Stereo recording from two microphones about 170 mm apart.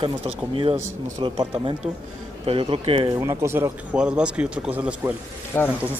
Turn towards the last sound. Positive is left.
turn(degrees=10)  # may be behind; listen again after turning